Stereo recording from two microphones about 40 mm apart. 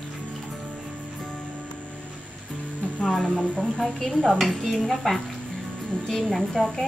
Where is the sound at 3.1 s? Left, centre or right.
Left.